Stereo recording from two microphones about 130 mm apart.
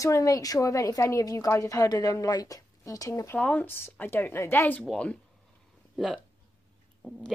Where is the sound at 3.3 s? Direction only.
10° left (ahead or behind).